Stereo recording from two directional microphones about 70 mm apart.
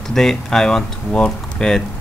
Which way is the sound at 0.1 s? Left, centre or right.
Centre.